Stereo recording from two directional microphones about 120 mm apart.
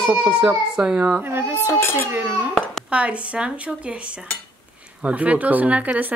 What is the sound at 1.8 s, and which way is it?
Speech, 20° left (ahead or behind).